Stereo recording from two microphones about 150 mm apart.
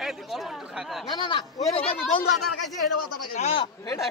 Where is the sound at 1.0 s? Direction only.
30° left (ahead or behind).